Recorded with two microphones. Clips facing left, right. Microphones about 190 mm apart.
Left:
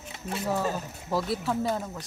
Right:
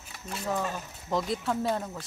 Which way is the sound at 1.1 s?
5° left (ahead or behind).